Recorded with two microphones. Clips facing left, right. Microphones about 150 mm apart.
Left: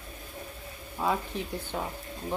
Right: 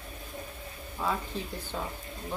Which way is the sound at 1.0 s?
15° left (ahead or behind).